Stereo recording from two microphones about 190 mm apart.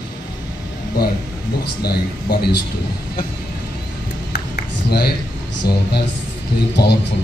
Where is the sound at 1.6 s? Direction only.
55° left (ahead or behind).